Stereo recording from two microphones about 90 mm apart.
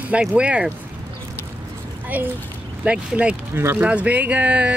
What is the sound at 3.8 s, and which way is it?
Speech, 15° right (ahead or behind).